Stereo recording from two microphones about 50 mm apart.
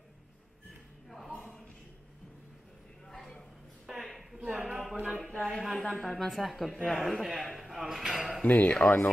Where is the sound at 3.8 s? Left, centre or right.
Centre.